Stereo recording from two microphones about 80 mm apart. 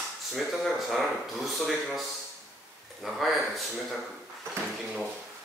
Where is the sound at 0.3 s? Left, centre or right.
Centre.